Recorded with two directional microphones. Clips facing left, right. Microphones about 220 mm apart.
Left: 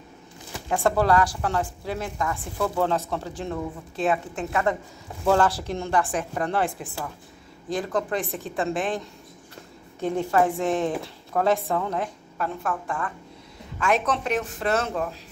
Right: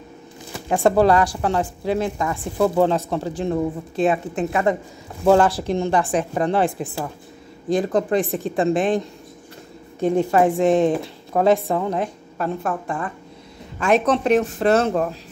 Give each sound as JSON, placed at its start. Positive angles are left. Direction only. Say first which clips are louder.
{"t": 0.7, "sound": "a woman's voice", "louder": "right 6 dB", "side_deg": -20}